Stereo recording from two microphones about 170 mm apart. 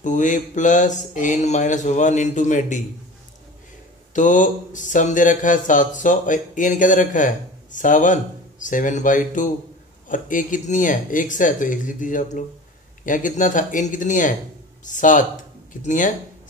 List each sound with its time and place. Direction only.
0.0 s speech: 45° left (ahead or behind)
4.1 s speech: 50° left (ahead or behind)